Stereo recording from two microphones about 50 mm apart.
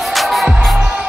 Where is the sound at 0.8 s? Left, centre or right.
Centre.